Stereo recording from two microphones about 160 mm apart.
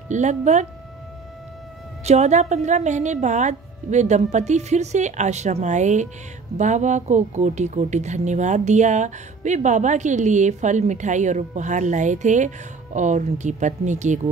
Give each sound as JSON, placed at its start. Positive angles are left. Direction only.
{"t": 0.1, "sound": "speech", "side_deg": -50}
{"t": 2.0, "sound": "speech", "side_deg": -45}